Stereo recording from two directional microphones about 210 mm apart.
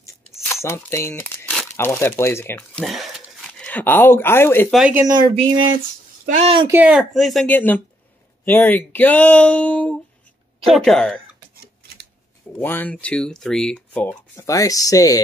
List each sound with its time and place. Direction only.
0.5 s crumpling: 10° left (ahead or behind)
1.8 s speech: 10° left (ahead or behind)
4.7 s speech: 5° right (ahead or behind)
5.0 s speech: 20° right (ahead or behind)
6.7 s speech: 5° right (ahead or behind)
12.5 s speech: 10° left (ahead or behind)